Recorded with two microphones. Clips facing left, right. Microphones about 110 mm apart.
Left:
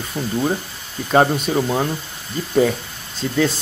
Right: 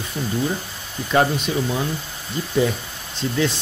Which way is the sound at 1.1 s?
40° left (ahead or behind).